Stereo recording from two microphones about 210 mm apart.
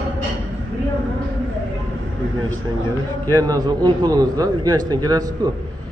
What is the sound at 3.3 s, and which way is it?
A man's voice, 15° right (ahead or behind).